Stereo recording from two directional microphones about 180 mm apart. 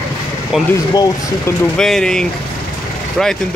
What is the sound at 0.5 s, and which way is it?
Speech, 5° right (ahead or behind).